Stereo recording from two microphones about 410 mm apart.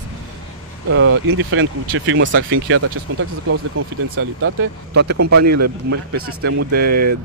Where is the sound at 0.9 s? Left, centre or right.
Right.